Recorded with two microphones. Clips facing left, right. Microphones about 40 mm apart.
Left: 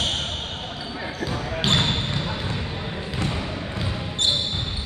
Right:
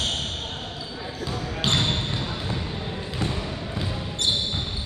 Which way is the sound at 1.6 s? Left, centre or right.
Centre.